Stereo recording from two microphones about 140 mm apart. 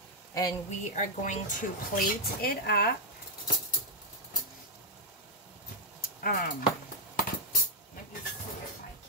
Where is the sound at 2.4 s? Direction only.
90° left.